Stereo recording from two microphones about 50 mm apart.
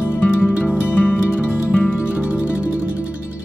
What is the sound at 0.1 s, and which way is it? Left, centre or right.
Music, left.